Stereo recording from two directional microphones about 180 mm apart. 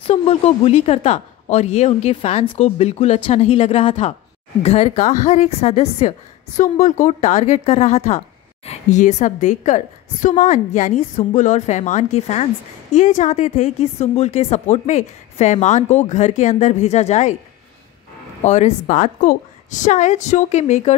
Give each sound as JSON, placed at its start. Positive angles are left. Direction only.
{"t": 0.0, "sound": "speech", "side_deg": 35}
{"t": 18.4, "sound": "speech", "side_deg": 40}